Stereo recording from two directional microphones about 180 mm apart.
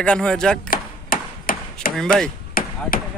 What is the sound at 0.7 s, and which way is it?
Chop, 55° left (ahead or behind).